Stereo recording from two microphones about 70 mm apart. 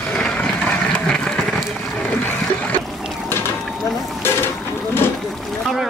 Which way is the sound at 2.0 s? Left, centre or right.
Left.